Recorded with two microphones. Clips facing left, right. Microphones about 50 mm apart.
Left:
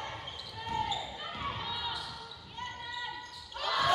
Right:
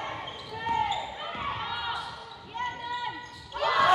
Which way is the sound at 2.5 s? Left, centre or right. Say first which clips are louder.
Right 8 dB; right.